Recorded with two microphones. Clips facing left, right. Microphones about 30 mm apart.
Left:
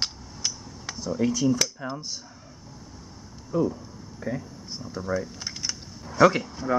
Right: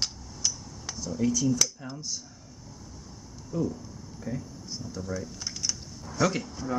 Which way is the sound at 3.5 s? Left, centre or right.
Left.